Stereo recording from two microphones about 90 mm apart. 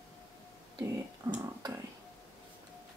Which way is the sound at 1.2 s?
30° right (ahead or behind).